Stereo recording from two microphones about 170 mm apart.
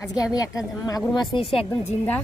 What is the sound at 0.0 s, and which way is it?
A woman's voice, 20° left (ahead or behind).